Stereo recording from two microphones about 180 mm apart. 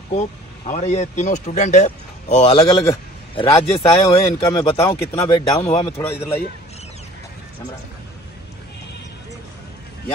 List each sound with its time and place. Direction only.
0.1 s speech: 40° left (ahead or behind)
2.7 s speech: 15° left (ahead or behind)
3.3 s a man's voice: 25° left (ahead or behind)
3.8 s speech: 20° left (ahead or behind)
5.6 s speech: 30° left (ahead or behind)